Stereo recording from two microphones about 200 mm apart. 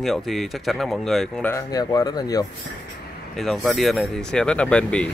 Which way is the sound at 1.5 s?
20° left (ahead or behind).